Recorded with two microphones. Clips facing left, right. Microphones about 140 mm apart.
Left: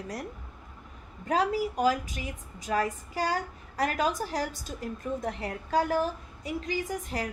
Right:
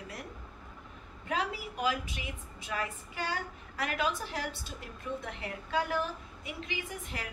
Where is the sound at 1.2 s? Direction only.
40° left (ahead or behind).